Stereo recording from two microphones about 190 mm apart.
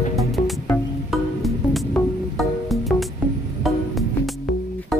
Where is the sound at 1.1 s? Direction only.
Centre (ahead or behind).